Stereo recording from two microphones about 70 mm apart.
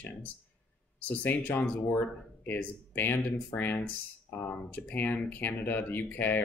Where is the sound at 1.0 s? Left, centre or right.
Left.